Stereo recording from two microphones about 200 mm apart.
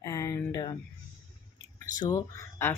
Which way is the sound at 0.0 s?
15° left (ahead or behind).